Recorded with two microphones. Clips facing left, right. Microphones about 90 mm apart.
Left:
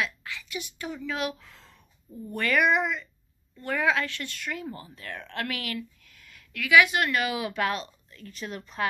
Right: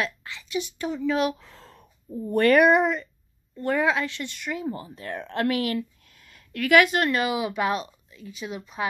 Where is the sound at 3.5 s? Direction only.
30° right (ahead or behind); by 8.8 s 10° right (ahead or behind).